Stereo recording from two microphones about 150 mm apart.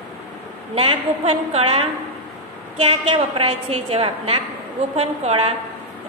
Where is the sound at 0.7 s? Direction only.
40° right (ahead or behind).